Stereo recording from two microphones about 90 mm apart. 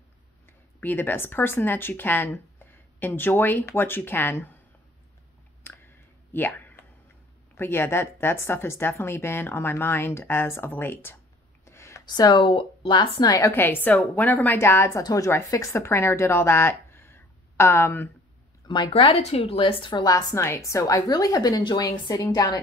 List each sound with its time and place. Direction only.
0.5 s speech: 25° left (ahead or behind)
5.6 s clicking: 25° left (ahead or behind)
7.5 s a woman's voice: 25° left (ahead or behind)
11.6 s a sound: 30° left (ahead or behind)
12.1 s speech: 55° left (ahead or behind)
13.5 s a woman's voice: 25° left (ahead or behind)
18.7 s a woman's voice: 70° left (ahead or behind)
20.1 s a woman's voice: 40° left (ahead or behind)